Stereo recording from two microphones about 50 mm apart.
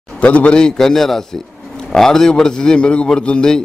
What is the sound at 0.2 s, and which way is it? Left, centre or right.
Speech, left.